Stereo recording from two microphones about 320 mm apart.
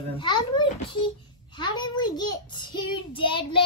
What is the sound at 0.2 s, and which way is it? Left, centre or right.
A child's voice, centre.